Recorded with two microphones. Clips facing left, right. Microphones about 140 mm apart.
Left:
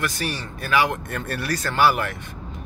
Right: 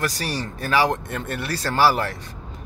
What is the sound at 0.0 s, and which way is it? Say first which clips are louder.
Speech: right 1 dB; 35° right (ahead or behind).